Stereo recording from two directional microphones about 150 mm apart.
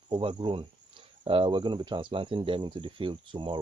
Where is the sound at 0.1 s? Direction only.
30° right (ahead or behind).